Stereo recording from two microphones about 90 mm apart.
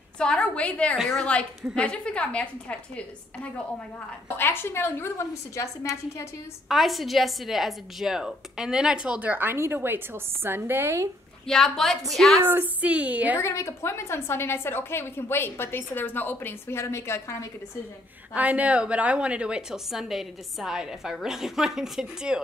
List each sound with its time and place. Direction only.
0.2 s a woman's voice: 10° left (ahead or behind)
0.9 s a woman's voice: centre (ahead or behind)
1.8 s a woman's voice: 10° left (ahead or behind)
4.4 s a woman's voice: 25° left (ahead or behind)
6.7 s a woman's voice: centre (ahead or behind); by 11.1 s 30° right (ahead or behind)
11.4 s a woman's voice: 5° left (ahead or behind)
12.4 s a woman's voice: 20° right (ahead or behind)
13.4 s a woman's voice: 30° left (ahead or behind)
18.3 s a woman's voice: 15° right (ahead or behind)